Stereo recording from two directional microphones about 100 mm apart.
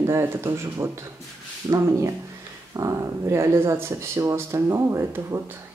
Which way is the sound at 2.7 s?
30° right (ahead or behind).